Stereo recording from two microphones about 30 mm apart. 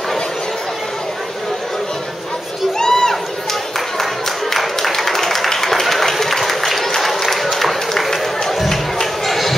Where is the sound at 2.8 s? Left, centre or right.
Centre.